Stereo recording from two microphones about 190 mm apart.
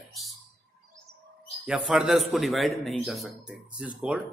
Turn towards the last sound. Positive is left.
turn(degrees=-5)  # may be behind; listen again after turning